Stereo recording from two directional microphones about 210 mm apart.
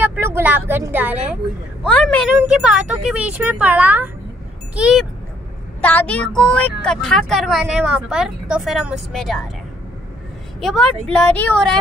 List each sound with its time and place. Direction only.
0.0 s speech: 10° right (ahead or behind)
1.9 s speech: 5° left (ahead or behind)
5.8 s speech: 10° left (ahead or behind)
10.6 s speech: centre (ahead or behind)